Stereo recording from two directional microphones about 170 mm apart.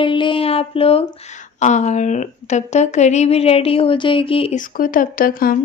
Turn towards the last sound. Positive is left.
turn(degrees=55)  # may be behind; listen again after turning